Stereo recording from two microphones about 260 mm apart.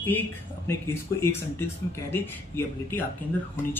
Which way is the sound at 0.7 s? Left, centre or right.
Centre.